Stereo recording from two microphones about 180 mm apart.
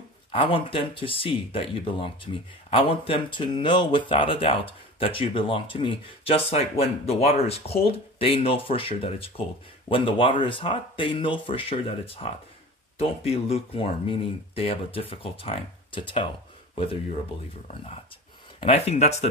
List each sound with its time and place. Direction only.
0.3 s speech: 30° left (ahead or behind)